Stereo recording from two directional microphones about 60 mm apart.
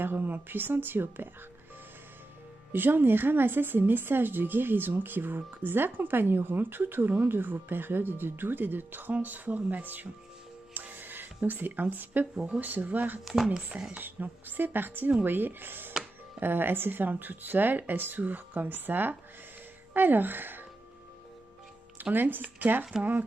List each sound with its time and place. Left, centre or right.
0.0 s speech: right
2.7 s speech: right
10.7 s music: right
12.4 s speech: centre
12.6 s speech: right
13.2 s speech: centre
13.9 s speech: right
22.1 s speech: right